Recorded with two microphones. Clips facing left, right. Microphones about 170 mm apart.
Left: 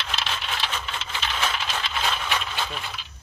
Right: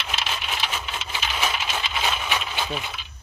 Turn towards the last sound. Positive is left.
turn(degrees=-5)  # may be behind; listen again after turning